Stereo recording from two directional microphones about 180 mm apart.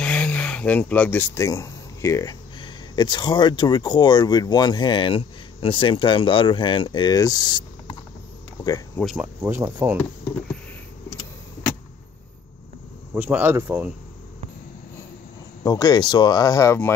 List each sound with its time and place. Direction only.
0.0 s speech: 5° left (ahead or behind); by 7.6 s 25° left (ahead or behind)
9.0 s speech: 5° right (ahead or behind)
13.1 s speech: 10° right (ahead or behind)
15.6 s speech: 20° left (ahead or behind)